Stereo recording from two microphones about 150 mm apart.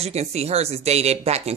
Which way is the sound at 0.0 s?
45° right (ahead or behind).